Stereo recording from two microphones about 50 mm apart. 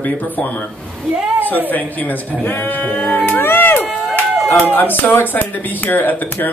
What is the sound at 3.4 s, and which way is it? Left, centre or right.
Crowd, left.